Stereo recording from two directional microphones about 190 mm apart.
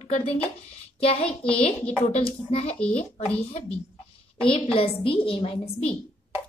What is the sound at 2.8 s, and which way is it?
Speech, 5° left (ahead or behind).